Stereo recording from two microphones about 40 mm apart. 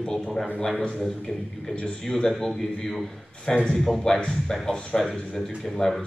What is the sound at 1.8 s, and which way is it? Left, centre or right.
Speech, left.